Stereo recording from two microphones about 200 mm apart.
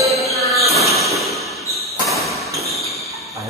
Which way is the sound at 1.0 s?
Centre (ahead or behind).